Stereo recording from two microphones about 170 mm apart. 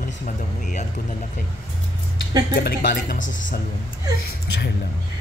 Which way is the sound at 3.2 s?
90° left.